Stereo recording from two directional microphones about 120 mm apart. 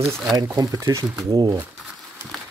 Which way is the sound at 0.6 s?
30° right (ahead or behind).